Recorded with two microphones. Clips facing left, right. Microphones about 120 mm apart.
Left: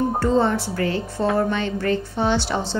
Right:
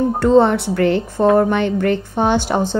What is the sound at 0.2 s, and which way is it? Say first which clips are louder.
A woman's voice: right 9 dB; 65° right (ahead or behind).